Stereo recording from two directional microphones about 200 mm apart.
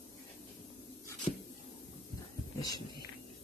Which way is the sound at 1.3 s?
25° left (ahead or behind).